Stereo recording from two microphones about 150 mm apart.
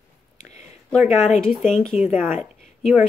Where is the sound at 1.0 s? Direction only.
50° left (ahead or behind).